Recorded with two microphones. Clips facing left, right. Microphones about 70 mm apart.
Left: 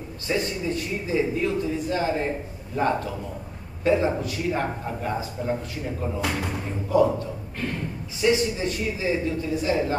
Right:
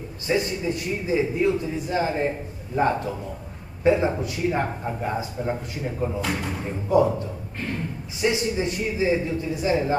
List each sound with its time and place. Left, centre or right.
0.3 s a man's voice: centre
8.2 s speech: right